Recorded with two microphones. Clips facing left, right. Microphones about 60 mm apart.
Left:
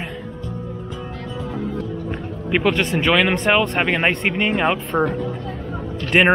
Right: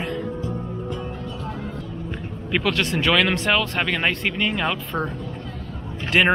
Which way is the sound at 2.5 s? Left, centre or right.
Centre.